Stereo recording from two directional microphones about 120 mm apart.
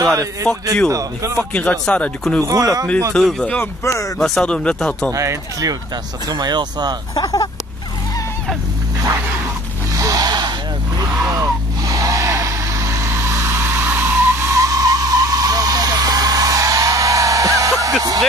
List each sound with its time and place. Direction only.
0.0 s speech: 25° right (ahead or behind)
1.5 s speech: 10° left (ahead or behind)
2.4 s speech: 30° right (ahead or behind)
3.1 s speech: 5° left (ahead or behind)
3.8 s speech: 25° left (ahead or behind)
4.2 s speech: 5° left (ahead or behind)
5.1 s speech: 25° right (ahead or behind)
7.2 s speech: 35° left (ahead or behind)
9.9 s snort: 30° right (ahead or behind)
11.0 s vehicle: 30° right (ahead or behind)